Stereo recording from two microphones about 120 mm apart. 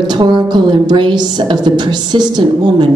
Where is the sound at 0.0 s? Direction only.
40° right (ahead or behind).